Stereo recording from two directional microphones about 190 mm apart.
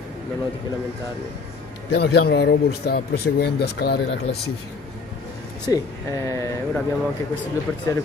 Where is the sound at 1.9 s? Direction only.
60° left (ahead or behind).